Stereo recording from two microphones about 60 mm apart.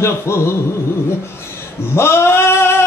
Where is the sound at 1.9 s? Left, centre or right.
Left.